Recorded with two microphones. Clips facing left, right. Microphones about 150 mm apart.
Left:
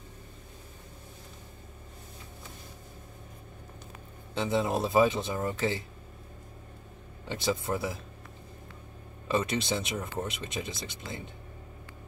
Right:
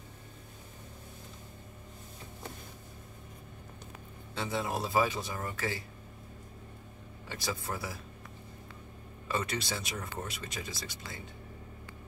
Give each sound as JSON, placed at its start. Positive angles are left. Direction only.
{"t": 4.4, "sound": "speech", "side_deg": 20}
{"t": 7.2, "sound": "speech", "side_deg": 25}
{"t": 9.3, "sound": "speech", "side_deg": 25}